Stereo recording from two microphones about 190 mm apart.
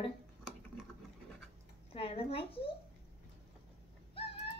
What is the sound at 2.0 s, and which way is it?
Speech, 30° left (ahead or behind).